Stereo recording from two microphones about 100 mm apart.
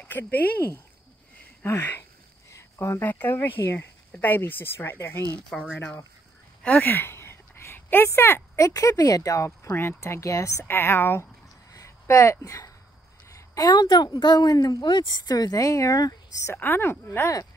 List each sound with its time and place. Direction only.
0.0 s speech: 20° left (ahead or behind)
5.5 s speech: 10° left (ahead or behind)
6.9 s a woman's voice: 20° left (ahead or behind)
11.7 s a sound: 35° left (ahead or behind)
13.3 s a woman's voice: 40° left (ahead or behind)
16.5 s speech: 20° left (ahead or behind)